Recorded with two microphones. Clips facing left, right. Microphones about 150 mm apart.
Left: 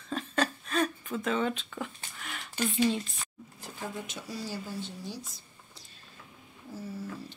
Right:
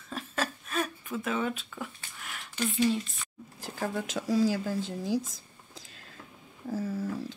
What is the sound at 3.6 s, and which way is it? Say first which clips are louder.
Speech: right 6 dB; 80° right.